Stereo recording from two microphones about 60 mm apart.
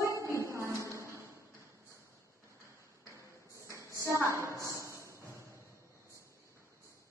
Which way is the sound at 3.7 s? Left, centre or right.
Right.